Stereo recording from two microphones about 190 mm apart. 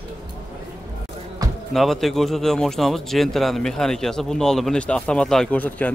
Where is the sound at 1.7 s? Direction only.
Centre (ahead or behind).